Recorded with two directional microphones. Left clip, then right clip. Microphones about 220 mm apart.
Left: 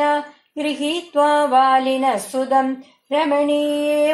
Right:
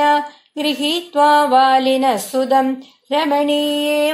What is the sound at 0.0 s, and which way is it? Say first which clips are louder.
Speech: right 4 dB; 45° right (ahead or behind).